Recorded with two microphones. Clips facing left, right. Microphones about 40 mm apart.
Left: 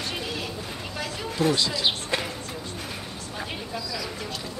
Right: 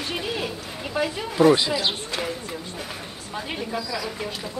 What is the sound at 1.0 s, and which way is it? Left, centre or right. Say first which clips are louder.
Speech: right 8 dB; centre.